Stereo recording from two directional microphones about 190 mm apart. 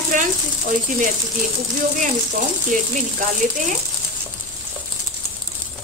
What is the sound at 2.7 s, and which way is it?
Speech, 45° right (ahead or behind).